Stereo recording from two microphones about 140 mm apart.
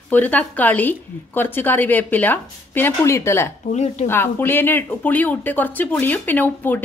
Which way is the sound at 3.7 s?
55° left (ahead or behind).